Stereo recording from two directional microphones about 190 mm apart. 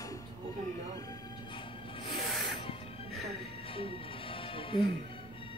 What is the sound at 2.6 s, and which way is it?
Music, 30° left (ahead or behind).